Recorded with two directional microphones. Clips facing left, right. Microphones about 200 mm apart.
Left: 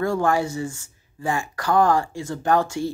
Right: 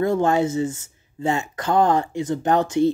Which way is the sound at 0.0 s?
20° right (ahead or behind).